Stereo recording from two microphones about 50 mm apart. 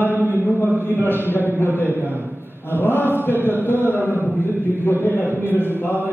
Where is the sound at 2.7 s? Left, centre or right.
Left.